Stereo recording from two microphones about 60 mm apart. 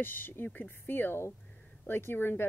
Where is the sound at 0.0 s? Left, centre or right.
Left.